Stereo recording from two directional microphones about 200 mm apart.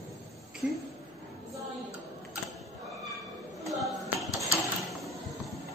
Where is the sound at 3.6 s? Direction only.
Centre (ahead or behind).